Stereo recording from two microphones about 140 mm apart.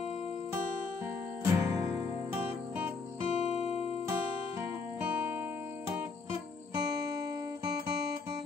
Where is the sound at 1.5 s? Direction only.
10° right (ahead or behind).